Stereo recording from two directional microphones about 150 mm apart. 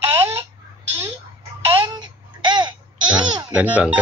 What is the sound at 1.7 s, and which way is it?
Babbling, 30° right (ahead or behind).